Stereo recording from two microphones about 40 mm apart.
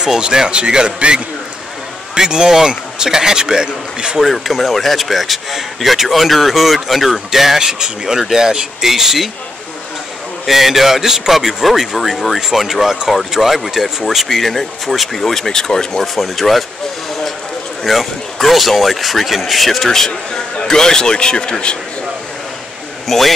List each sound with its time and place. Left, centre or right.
0.0 s a man's voice: centre
4.2 s speech: centre
10.4 s a man's voice: centre
14.2 s speech: centre
16.2 s speech: centre
17.8 s speech: centre
20.1 s speech: left
23.0 s speech: centre